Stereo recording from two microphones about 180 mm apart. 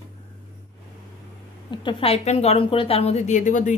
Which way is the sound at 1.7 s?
25° left (ahead or behind).